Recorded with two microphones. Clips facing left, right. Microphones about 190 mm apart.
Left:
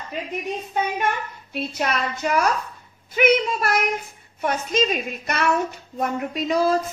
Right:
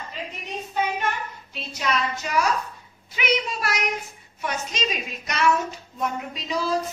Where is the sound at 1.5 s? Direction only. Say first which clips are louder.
Left 3 dB; 55° left (ahead or behind).